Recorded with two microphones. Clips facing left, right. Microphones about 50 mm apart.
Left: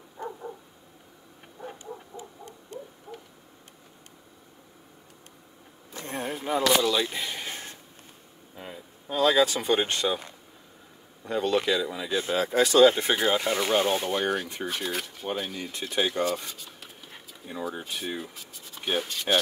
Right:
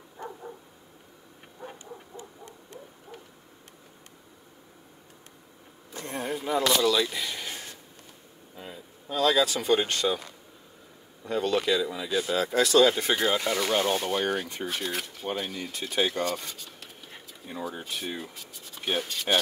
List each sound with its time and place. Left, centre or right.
6.3 s speech: left
7.1 s a sound: left
8.5 s speech: left
11.2 s speech: centre
11.7 s speech: centre
12.1 s speech: left
13.1 s speech: centre